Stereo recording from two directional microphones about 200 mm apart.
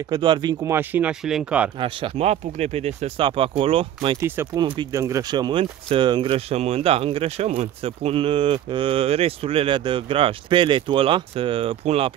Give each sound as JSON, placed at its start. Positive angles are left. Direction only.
{"t": 0.1, "sound": "speech", "side_deg": -20}
{"t": 1.8, "sound": "speech", "side_deg": -25}